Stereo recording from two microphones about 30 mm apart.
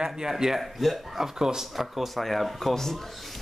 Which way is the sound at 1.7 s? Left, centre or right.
Centre.